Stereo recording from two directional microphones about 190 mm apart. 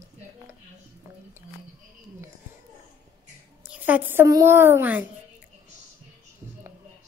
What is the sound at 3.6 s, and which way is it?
A woman's voice, 5° right (ahead or behind).